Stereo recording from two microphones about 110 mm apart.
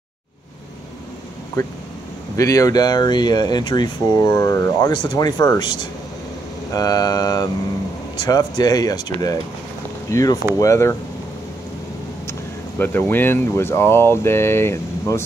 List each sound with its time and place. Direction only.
2.3 s speech: 30° left (ahead or behind)
4.9 s speech: 45° left (ahead or behind); by 11.0 s 30° left (ahead or behind)
12.3 s a sound: 20° left (ahead or behind)
13.1 s speech: 20° left (ahead or behind)